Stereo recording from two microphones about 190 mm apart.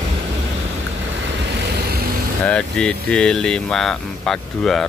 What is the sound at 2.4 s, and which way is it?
Speech, 5° left (ahead or behind).